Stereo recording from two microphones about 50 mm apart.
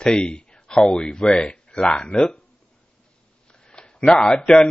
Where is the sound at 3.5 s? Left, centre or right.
Centre.